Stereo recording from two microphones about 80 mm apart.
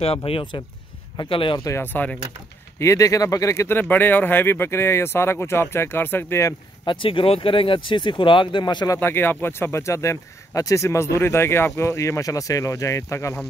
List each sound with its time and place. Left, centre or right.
1.1 s speech: left
1.8 s speech: left
2.8 s speech: left
3.9 s speech: left
6.9 s speech: left
9.0 s speech: left